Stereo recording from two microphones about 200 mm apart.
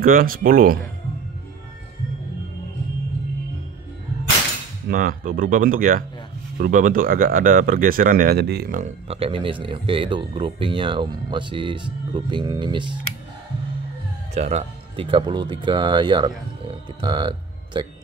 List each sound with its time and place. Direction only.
0.0 s speech: 45° right (ahead or behind)
4.8 s speech: 45° right (ahead or behind); by 13.0 s 25° right (ahead or behind)
14.3 s speech: 35° right (ahead or behind)